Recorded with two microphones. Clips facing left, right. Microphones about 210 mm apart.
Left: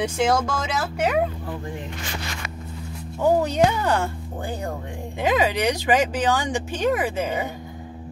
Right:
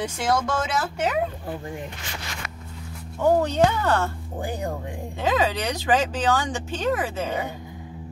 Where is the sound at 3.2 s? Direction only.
10° left (ahead or behind).